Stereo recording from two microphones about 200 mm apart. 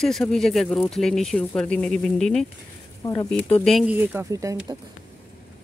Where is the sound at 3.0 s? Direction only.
15° left (ahead or behind).